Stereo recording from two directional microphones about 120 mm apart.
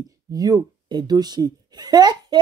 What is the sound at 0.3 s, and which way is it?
Speech, 30° right (ahead or behind).